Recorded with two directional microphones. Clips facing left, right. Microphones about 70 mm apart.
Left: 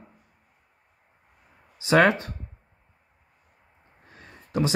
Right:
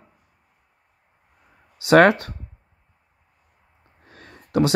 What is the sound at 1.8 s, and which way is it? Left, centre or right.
Speech, right.